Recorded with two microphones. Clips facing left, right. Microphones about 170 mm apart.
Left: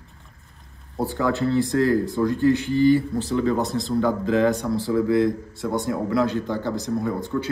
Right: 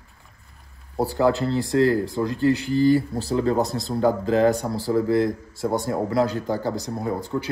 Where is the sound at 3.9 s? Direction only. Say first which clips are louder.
Right 1 dB; 35° right (ahead or behind).